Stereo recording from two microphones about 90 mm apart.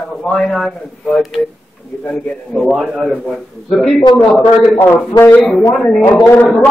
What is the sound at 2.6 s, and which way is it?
A man's voice, 5° right (ahead or behind).